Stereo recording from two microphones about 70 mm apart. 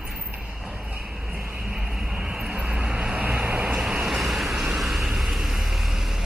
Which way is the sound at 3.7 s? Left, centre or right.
Centre.